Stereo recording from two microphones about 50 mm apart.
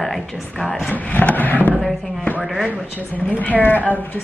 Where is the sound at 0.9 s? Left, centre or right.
Left.